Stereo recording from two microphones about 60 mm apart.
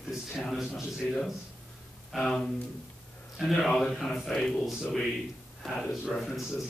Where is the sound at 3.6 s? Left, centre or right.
Centre.